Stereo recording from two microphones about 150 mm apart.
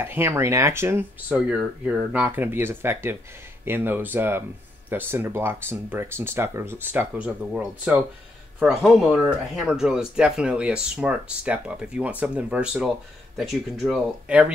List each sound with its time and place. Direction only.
0.0 s speech: 15° right (ahead or behind)